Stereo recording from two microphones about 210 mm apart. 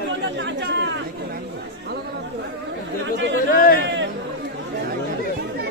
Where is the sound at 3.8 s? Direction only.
55° right (ahead or behind).